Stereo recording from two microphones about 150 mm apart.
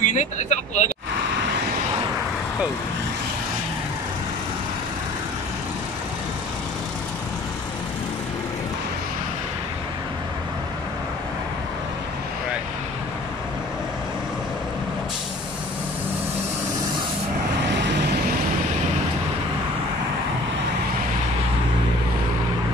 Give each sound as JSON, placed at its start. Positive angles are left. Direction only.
{"t": 0.0, "sound": "speech", "side_deg": 55}